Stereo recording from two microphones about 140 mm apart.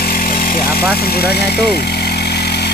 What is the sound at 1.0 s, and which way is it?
Speech, 90° left.